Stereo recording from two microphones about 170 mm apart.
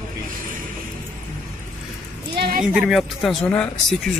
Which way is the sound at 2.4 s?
65° right (ahead or behind).